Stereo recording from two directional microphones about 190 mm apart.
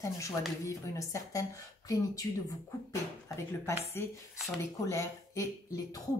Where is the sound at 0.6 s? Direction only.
15° left (ahead or behind).